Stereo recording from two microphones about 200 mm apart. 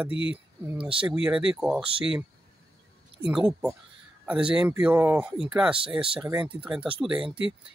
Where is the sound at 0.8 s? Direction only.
25° right (ahead or behind).